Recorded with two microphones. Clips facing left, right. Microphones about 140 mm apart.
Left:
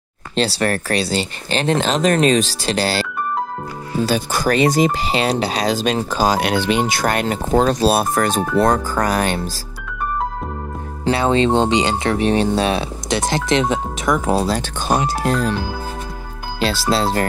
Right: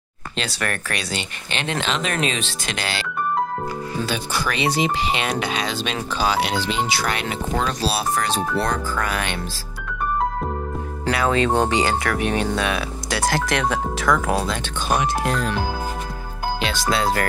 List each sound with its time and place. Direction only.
0.4 s speech: 35° left (ahead or behind)
11.1 s speech: 25° left (ahead or behind)
16.5 s speech: 35° left (ahead or behind)